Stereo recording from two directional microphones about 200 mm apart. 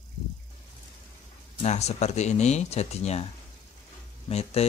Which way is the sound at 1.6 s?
35° left (ahead or behind).